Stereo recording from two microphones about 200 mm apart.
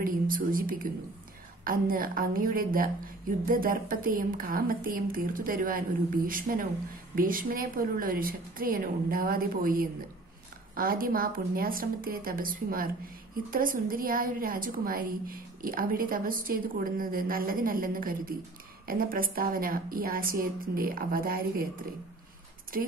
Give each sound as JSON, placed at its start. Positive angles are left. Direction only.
{"t": 0.0, "sound": "a woman's voice", "side_deg": -45}
{"t": 22.7, "sound": "a woman's voice", "side_deg": -45}